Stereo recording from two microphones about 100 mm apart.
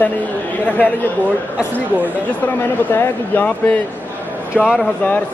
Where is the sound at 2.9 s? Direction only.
15° left (ahead or behind).